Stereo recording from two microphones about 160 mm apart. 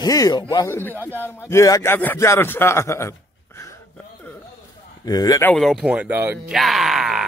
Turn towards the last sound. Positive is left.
turn(degrees=0)  # may be behind; listen again after turning